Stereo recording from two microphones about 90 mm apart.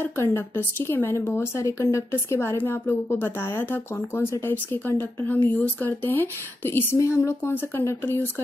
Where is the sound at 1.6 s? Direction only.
35° left (ahead or behind).